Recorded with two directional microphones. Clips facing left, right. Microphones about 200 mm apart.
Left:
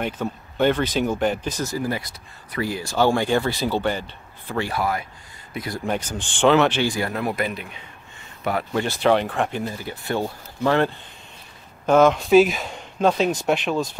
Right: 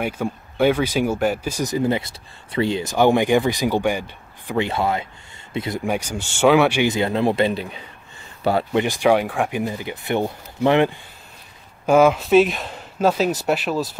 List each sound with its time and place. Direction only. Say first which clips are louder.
0.0 s speech: right 2 dB; 10° right (ahead or behind); by 5.8 s 25° right (ahead or behind)
5.9 s speech: right 2 dB; 10° right (ahead or behind)
6.9 s speech: right 6 dB; 25° right (ahead or behind)
8.7 s speech: right 1 dB; 15° right (ahead or behind)